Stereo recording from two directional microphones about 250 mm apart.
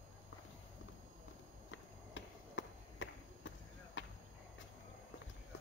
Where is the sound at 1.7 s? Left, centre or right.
Left.